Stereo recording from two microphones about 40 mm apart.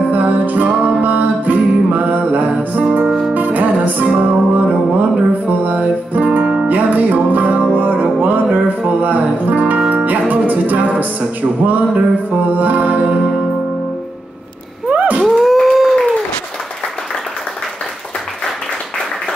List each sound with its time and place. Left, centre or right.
0.1 s music: right
3.1 s music: centre
3.3 s music: right
6.4 s music: right
6.7 s music: right
14.9 s a sound: right
15.2 s a sound: centre